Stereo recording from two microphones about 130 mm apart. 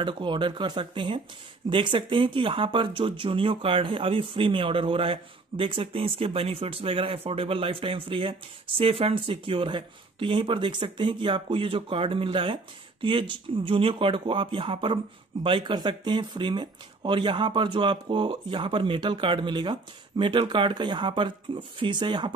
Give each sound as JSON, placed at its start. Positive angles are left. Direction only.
{"t": 0.0, "sound": "speech", "side_deg": -40}